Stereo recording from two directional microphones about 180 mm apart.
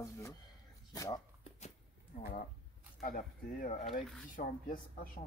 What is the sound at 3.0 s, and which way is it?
Speech, 50° left (ahead or behind).